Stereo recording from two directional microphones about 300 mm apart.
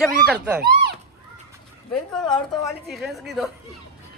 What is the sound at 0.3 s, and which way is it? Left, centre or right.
Speech, centre.